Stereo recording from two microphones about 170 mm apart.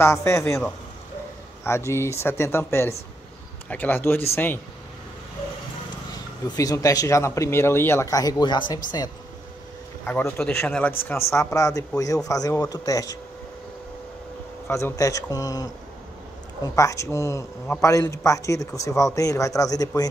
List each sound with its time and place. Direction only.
0.0 s speech: 15° left (ahead or behind)
1.9 s speech: 15° left (ahead or behind)
6.4 s a man's voice: 20° left (ahead or behind)
10.0 s a man's voice: 10° left (ahead or behind)
14.7 s a man's voice: 20° left (ahead or behind)